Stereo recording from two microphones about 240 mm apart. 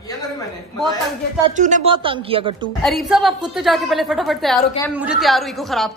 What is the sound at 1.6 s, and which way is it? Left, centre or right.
Speech, right.